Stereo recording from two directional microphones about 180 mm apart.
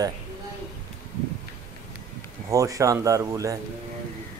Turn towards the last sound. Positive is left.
turn(degrees=-15)  # may be behind; listen again after turning